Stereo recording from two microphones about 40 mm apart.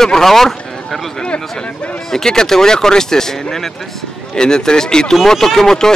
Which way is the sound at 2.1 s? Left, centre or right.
Centre.